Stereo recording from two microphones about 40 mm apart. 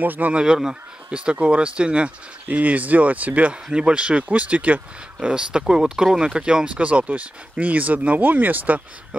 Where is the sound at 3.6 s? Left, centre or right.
Right.